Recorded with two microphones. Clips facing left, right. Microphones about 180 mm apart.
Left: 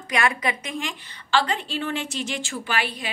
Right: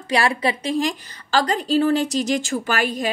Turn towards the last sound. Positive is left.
turn(degrees=-45)  # may be behind; listen again after turning